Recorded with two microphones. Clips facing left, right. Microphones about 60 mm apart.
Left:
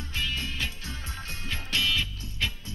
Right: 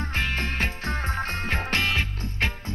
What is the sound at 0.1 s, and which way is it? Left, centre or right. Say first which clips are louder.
Music: right 3 dB; right.